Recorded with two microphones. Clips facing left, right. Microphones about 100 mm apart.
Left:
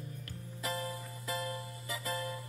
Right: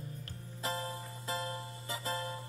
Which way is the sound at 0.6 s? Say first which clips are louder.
Even; 30° right (ahead or behind).